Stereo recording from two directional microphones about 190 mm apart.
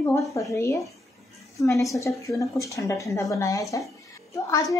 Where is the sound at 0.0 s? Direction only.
15° left (ahead or behind).